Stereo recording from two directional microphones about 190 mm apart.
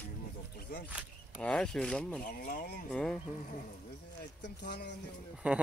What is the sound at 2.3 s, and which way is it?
Speech, 50° left (ahead or behind).